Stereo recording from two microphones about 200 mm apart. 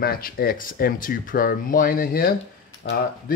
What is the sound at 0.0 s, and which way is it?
Speech, 50° left (ahead or behind).